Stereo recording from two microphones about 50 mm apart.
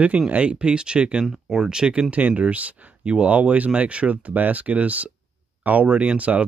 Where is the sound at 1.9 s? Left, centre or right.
Right.